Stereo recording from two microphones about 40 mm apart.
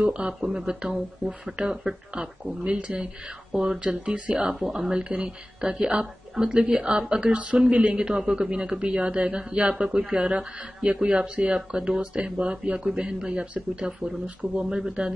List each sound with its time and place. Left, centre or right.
0.0 s speech: right
1.2 s speech: centre
3.8 s speech: right
8.1 s speech: centre
8.7 s speech: right